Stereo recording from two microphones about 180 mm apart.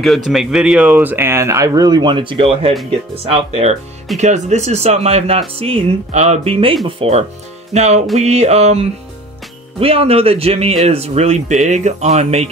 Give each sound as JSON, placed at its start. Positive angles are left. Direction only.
{"t": 0.0, "sound": "speech", "side_deg": 0}